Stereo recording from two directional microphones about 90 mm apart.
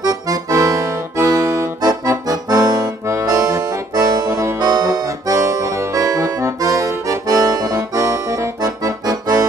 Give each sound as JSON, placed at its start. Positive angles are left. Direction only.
{"t": 0.0, "sound": "accordion", "side_deg": -40}
{"t": 2.2, "sound": "accordion", "side_deg": -45}